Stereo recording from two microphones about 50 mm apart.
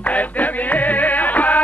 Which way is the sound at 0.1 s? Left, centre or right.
Left.